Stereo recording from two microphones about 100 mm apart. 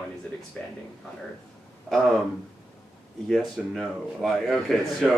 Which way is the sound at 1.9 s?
Centre (ahead or behind).